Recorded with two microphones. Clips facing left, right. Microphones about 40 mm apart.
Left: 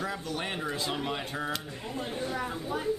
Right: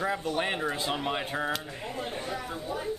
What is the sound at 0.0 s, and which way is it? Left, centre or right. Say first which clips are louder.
Speech: right 5 dB; right.